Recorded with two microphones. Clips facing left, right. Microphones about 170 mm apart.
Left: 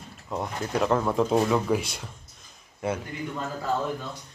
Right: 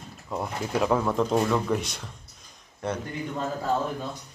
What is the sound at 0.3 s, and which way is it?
Speech, centre (ahead or behind).